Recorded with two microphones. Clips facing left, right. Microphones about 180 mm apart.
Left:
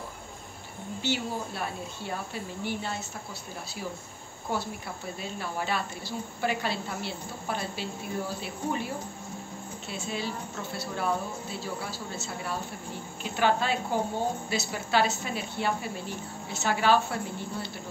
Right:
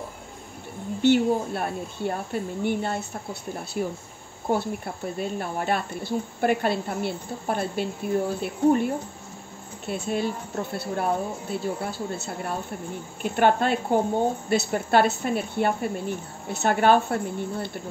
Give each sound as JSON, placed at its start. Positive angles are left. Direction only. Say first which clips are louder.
{"t": 1.0, "sound": "speech", "louder": "right 12 dB", "side_deg": -55}